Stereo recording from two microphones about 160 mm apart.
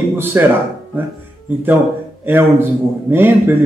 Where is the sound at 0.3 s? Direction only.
15° right (ahead or behind).